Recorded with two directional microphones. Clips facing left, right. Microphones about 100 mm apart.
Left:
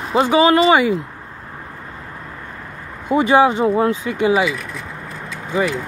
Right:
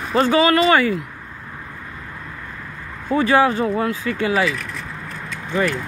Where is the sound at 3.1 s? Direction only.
20° left (ahead or behind).